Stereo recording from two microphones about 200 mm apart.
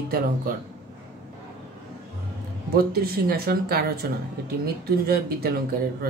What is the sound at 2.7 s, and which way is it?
Speech, 50° right (ahead or behind).